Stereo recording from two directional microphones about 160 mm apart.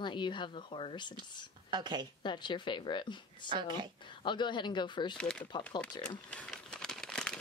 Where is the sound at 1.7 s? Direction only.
30° right (ahead or behind).